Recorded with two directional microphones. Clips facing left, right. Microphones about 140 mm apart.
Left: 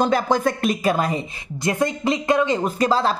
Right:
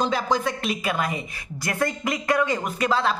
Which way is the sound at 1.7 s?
20° left (ahead or behind).